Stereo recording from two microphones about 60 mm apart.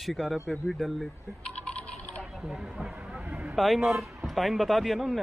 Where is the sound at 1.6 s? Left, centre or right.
Centre.